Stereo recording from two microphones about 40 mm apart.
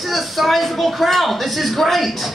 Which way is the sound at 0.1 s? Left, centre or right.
Centre.